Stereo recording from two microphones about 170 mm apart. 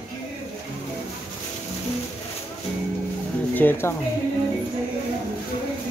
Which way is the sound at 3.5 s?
10° left (ahead or behind).